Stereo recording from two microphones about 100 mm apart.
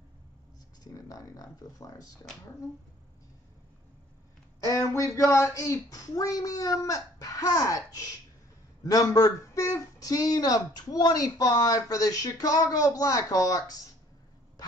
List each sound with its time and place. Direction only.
0.8 s speech: 35° left (ahead or behind)
4.6 s speech: 35° left (ahead or behind)